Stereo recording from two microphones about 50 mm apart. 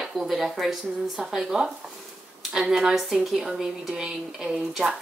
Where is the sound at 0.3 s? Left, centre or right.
Centre.